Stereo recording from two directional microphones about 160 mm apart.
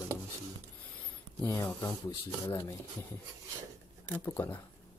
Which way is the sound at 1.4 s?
15° left (ahead or behind).